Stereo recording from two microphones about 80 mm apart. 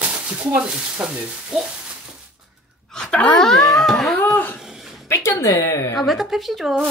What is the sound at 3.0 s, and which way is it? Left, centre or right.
Speech, centre.